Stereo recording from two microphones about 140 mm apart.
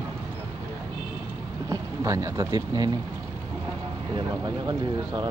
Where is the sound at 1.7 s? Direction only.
25° right (ahead or behind).